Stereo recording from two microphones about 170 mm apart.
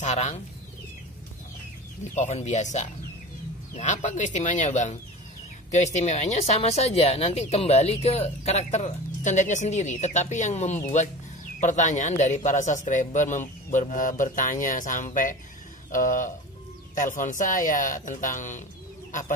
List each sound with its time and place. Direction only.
0.0 s a man's voice: 45° left (ahead or behind)
2.1 s a man's voice: 40° left (ahead or behind)